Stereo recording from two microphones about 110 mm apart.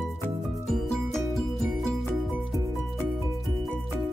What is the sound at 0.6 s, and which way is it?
Music, centre (ahead or behind).